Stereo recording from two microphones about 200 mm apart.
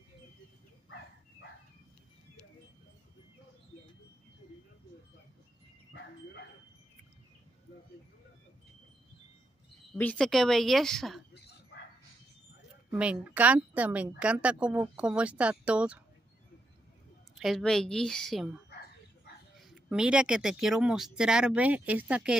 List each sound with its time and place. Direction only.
9.9 s speech: 5° left (ahead or behind)
11.3 s dog: 55° left (ahead or behind)
12.9 s a woman's voice: 5° right (ahead or behind)
17.4 s speech: centre (ahead or behind)
19.6 s speech: 5° right (ahead or behind)